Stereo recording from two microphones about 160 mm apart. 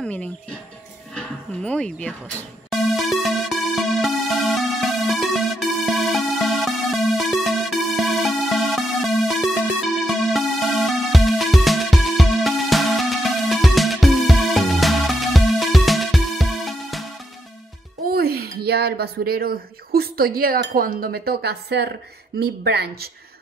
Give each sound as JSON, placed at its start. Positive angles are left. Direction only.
{"t": 0.0, "sound": "speech", "side_deg": 5}
{"t": 2.7, "sound": "music", "side_deg": 0}
{"t": 18.0, "sound": "a sound", "side_deg": -70}
{"t": 20.7, "sound": "speech", "side_deg": -65}